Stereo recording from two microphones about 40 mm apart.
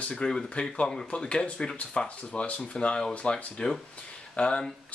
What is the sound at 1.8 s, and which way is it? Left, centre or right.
Speech, left.